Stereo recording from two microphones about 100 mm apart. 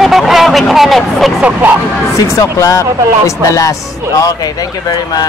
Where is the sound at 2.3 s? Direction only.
35° left (ahead or behind).